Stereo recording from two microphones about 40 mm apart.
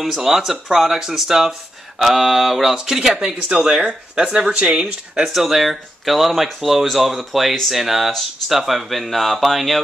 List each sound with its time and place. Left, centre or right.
0.2 s speech: centre
5.3 s speech: centre